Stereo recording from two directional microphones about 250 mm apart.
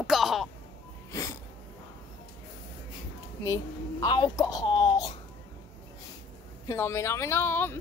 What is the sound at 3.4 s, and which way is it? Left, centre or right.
Speech, centre.